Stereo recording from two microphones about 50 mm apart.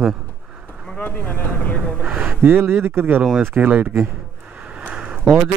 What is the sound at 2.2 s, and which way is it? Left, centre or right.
Speech, right.